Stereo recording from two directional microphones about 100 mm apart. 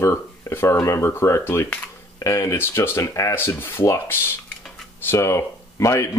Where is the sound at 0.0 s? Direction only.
25° left (ahead or behind).